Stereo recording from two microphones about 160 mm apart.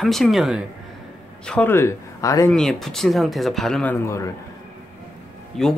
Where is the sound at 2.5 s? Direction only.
5° left (ahead or behind).